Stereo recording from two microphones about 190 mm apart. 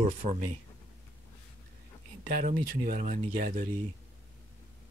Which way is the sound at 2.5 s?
45° right (ahead or behind).